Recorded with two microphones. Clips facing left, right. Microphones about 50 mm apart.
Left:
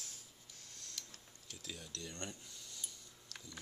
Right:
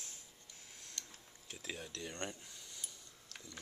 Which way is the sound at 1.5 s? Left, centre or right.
Right.